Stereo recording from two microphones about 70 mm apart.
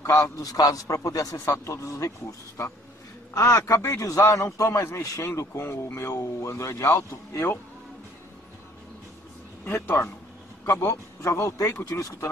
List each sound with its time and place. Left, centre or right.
0.2 s a man's voice: left
9.7 s a man's voice: left